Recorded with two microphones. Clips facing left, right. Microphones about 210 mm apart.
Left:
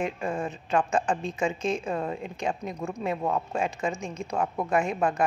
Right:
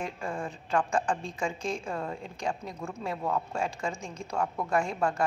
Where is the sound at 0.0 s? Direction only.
20° left (ahead or behind).